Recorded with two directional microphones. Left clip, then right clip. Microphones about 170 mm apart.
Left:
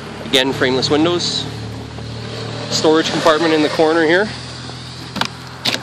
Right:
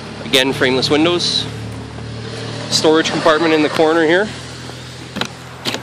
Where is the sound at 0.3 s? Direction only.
Centre (ahead or behind).